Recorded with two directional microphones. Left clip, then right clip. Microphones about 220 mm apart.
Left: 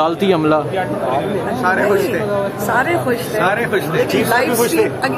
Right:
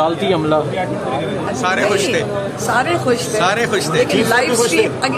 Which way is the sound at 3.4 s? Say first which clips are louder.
Left 1 dB; 20° right (ahead or behind).